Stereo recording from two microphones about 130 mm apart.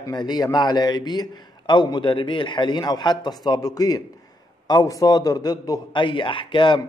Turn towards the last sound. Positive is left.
turn(degrees=40)  # may be behind; listen again after turning